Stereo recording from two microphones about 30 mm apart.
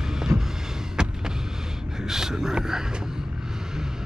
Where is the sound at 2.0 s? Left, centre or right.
Centre.